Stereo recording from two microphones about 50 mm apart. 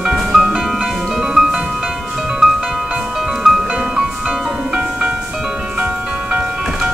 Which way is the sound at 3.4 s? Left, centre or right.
Centre.